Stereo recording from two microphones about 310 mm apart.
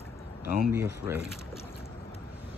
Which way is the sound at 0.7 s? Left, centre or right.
Centre.